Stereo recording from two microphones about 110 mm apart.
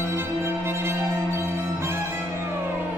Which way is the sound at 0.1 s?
20° right (ahead or behind).